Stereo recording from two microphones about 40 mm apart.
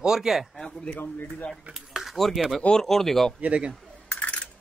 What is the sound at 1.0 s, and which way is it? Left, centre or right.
Speech, left.